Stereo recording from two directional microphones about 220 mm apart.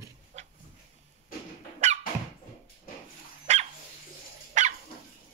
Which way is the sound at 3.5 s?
30° right (ahead or behind).